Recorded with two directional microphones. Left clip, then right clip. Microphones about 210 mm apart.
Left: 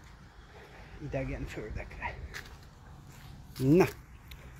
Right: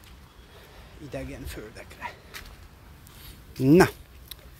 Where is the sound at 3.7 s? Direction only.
45° right (ahead or behind).